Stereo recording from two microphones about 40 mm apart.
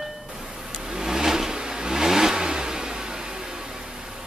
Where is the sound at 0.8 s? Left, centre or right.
Centre.